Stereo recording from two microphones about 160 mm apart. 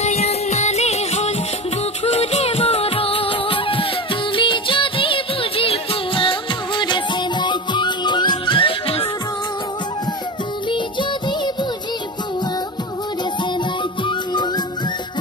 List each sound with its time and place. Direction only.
0.0 s music: 40° left (ahead or behind)
10.7 s music: 30° left (ahead or behind)
14.0 s music: 30° left (ahead or behind)